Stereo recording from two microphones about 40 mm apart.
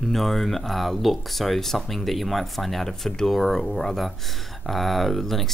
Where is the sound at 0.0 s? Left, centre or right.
Centre.